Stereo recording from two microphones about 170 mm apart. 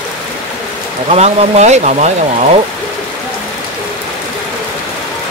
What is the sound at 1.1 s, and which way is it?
Speech, 40° right (ahead or behind).